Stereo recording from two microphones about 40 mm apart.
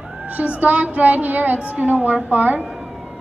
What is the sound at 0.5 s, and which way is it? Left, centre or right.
Speech, right.